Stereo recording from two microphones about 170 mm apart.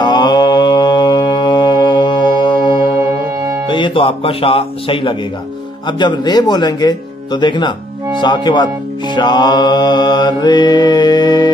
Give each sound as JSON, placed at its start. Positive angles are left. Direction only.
{"t": 0.0, "sound": "mantra", "side_deg": 25}
{"t": 3.6, "sound": "speech", "side_deg": 30}
{"t": 5.9, "sound": "music", "side_deg": 25}